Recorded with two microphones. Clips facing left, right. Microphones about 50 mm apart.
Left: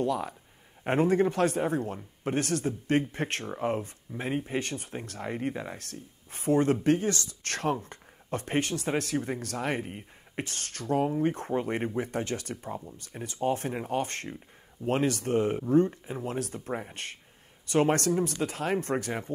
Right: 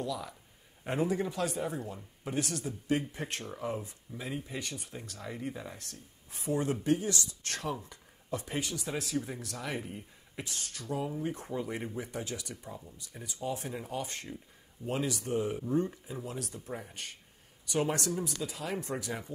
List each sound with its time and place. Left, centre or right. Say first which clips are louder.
0.0 s speech: left 8 dB; left